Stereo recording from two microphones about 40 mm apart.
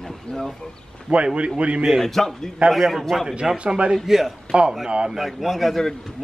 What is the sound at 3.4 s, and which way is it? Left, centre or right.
Speech, centre.